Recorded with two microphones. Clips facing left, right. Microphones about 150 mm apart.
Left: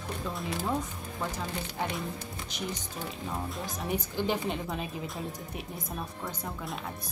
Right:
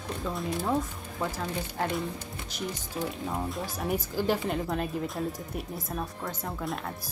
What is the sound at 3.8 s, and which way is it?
Speech, centre (ahead or behind).